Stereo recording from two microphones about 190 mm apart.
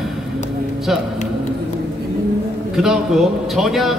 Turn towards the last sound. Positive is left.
turn(degrees=0)  # may be behind; listen again after turning